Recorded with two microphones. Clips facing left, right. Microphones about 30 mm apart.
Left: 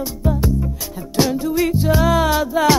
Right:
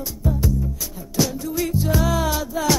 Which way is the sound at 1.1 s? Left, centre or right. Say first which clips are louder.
Left 5 dB; left.